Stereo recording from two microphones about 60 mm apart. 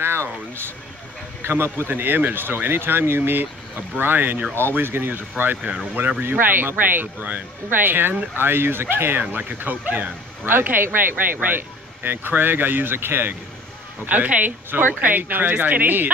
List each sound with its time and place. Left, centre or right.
0.0 s a sound: right
1.4 s speech: right
14.0 s speech: right